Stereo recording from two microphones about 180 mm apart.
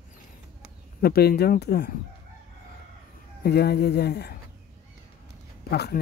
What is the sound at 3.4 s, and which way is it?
Speech, 65° left (ahead or behind).